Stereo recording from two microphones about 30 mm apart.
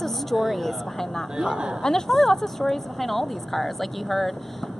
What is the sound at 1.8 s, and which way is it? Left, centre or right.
Speech, centre.